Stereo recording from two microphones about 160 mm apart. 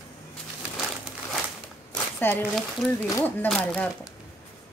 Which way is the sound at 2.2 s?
10° left (ahead or behind).